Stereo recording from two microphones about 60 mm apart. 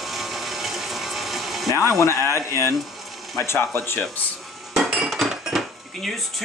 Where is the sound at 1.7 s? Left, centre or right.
Left.